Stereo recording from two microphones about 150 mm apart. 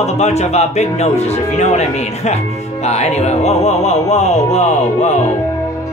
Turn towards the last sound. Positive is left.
turn(degrees=50)  # may be behind; listen again after turning